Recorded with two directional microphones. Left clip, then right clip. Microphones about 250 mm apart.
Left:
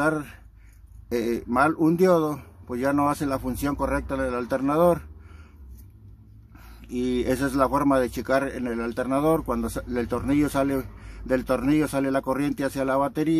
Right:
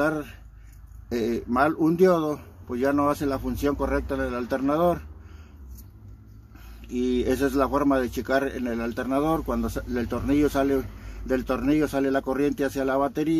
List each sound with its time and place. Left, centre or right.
0.0 s speech: centre
6.9 s speech: centre